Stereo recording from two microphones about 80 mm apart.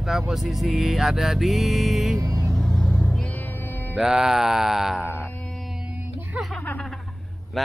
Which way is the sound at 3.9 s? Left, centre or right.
Centre.